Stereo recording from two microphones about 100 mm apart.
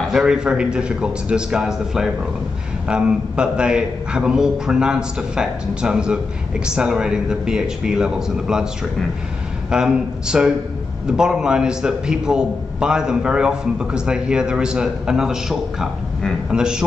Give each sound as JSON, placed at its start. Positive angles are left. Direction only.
{"t": 0.1, "sound": "a man's voice", "side_deg": -5}
{"t": 9.7, "sound": "a man's voice", "side_deg": -5}